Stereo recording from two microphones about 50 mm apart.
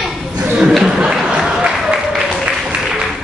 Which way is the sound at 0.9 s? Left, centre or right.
Centre.